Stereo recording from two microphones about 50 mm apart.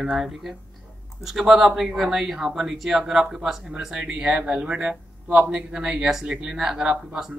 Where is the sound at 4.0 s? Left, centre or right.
Centre.